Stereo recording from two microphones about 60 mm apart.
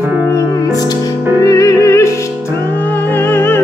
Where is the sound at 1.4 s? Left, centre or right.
Left.